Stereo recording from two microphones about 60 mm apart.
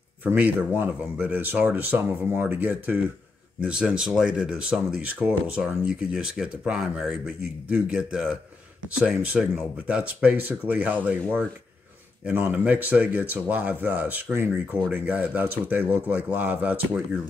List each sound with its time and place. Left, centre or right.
0.2 s speech: right
3.6 s speech: centre
7.2 s speech: right
12.3 s speech: right